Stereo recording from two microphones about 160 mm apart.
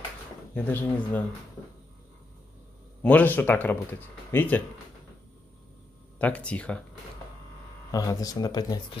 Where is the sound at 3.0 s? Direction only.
10° left (ahead or behind).